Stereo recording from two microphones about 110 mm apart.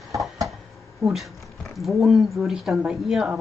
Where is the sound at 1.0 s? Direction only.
Centre (ahead or behind).